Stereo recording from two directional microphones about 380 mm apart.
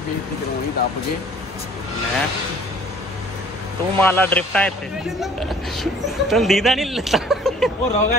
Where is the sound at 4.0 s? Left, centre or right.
Centre.